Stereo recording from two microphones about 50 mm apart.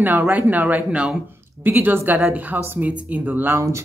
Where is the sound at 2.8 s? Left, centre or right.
Right.